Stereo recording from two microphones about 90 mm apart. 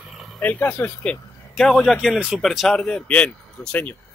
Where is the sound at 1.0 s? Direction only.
10° left (ahead or behind).